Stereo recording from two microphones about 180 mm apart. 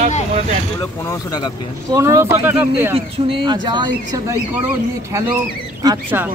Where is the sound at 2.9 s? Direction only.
30° right (ahead or behind).